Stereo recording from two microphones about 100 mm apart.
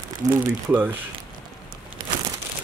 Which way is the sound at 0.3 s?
20° right (ahead or behind).